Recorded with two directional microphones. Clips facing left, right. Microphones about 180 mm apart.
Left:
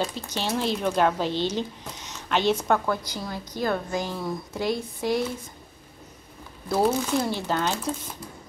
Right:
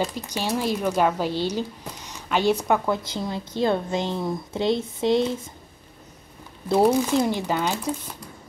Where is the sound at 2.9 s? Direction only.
25° right (ahead or behind).